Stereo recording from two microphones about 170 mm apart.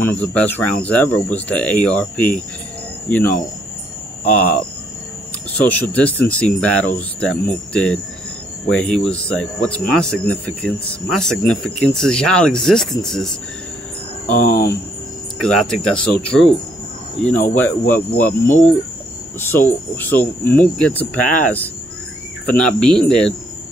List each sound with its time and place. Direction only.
0.0 s speech: 10° left (ahead or behind)
5.7 s speech: 10° left (ahead or behind)
14.2 s speech: 50° left (ahead or behind)
15.4 s speech: 5° left (ahead or behind)